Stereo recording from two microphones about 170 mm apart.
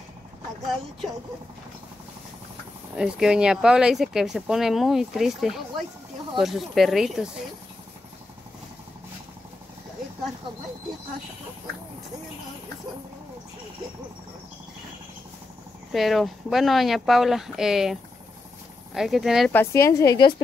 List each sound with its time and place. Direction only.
3.0 s speech: 5° right (ahead or behind)
15.9 s speech: centre (ahead or behind)
18.9 s speech: centre (ahead or behind)
19.5 s a woman's voice: 15° left (ahead or behind)